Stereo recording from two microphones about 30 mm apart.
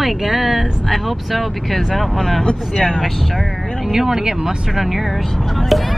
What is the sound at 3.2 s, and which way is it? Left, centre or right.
Speech, centre.